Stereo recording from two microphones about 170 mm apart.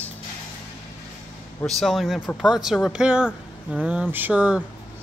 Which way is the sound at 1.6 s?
Centre (ahead or behind).